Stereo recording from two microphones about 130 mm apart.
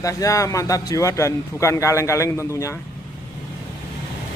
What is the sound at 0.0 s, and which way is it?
A man's voice, 25° left (ahead or behind).